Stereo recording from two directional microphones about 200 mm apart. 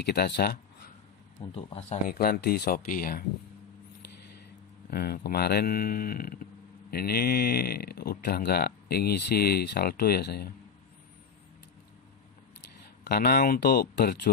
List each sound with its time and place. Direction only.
0.0 s speech: 50° left (ahead or behind)
1.5 s speech: 30° left (ahead or behind)
2.0 s speech: 50° left (ahead or behind)
4.9 s speech: 50° left (ahead or behind)
13.0 s speech: 50° left (ahead or behind)